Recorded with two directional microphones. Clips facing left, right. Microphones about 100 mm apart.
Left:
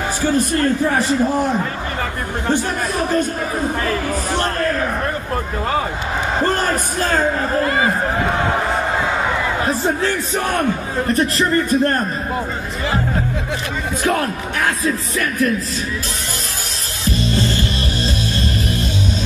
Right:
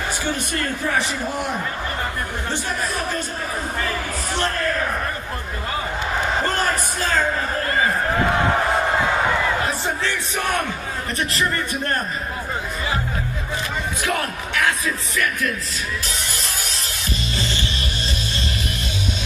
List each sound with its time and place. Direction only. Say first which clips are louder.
6.4 s speech: left 4 dB; 45° left (ahead or behind)
9.7 s a man's voice: left 6 dB; 40° left (ahead or behind)
14.0 s a man's voice: left 7 dB; 40° left (ahead or behind)